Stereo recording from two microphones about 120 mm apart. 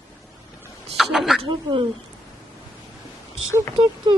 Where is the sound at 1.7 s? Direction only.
35° right (ahead or behind).